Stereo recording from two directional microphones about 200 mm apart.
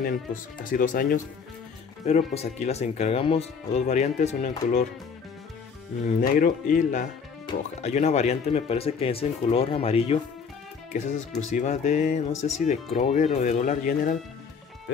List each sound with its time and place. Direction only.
0.0 s speech: 45° left (ahead or behind)
2.0 s speech: 35° left (ahead or behind)
6.0 s speech: 40° left (ahead or behind)